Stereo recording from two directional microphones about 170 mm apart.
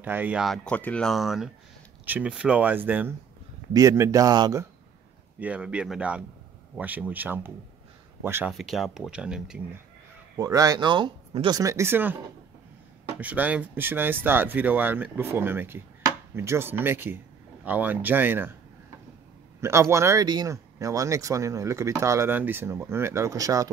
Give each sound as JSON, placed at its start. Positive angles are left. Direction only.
{"t": 0.0, "sound": "speech", "side_deg": -10}
{"t": 0.7, "sound": "speech", "side_deg": 10}
{"t": 5.4, "sound": "speech", "side_deg": -5}
{"t": 8.5, "sound": "speech", "side_deg": 0}
{"t": 10.3, "sound": "speech", "side_deg": -20}
{"t": 13.2, "sound": "speech", "side_deg": -10}
{"t": 19.6, "sound": "speech", "side_deg": -15}